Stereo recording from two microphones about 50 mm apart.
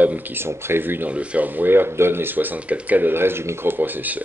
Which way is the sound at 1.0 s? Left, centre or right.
Right.